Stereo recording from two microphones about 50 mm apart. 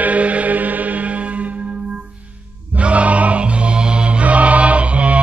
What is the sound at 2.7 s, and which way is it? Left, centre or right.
Music, right.